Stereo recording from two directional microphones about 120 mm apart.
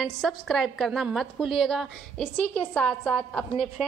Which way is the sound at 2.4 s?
10° left (ahead or behind).